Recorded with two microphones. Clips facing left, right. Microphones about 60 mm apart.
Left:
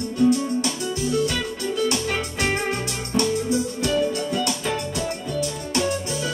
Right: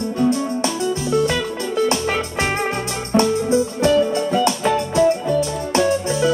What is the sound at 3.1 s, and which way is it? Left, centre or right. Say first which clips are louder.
Music: right 6 dB; right.